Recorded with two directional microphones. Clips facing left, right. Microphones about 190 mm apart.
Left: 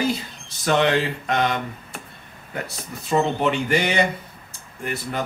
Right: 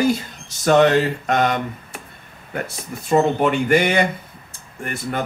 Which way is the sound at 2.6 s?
50° right (ahead or behind).